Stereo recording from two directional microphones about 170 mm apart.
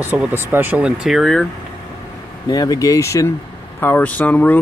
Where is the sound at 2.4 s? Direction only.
25° left (ahead or behind).